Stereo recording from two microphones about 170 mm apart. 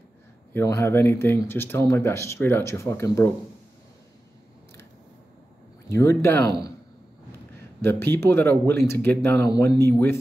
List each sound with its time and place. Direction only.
0.5 s speech: 15° left (ahead or behind)
5.9 s speech: 15° left (ahead or behind)
7.8 s speech: 15° left (ahead or behind)